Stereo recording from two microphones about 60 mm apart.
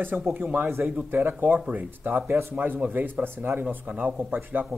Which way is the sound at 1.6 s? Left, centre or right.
Right.